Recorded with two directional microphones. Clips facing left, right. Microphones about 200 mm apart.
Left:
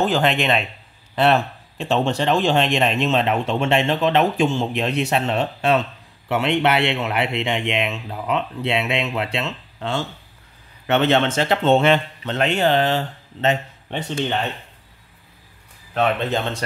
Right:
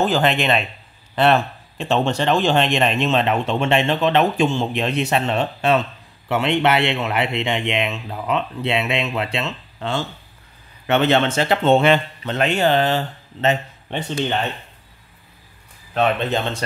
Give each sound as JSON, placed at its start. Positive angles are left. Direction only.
{"t": 0.0, "sound": "speech", "side_deg": 0}
{"t": 15.9, "sound": "speech", "side_deg": -25}